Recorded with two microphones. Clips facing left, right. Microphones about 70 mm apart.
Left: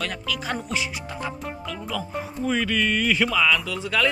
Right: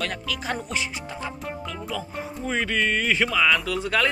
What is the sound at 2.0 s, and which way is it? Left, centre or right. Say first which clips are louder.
Speech: left 3 dB; right.